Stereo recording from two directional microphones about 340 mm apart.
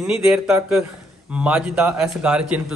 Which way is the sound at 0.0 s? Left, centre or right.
Centre.